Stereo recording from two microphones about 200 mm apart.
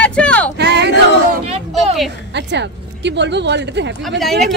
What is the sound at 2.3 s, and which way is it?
Speech, 60° right (ahead or behind).